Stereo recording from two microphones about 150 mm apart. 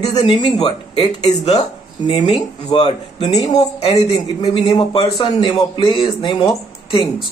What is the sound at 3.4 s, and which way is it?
A man's voice, 45° left (ahead or behind).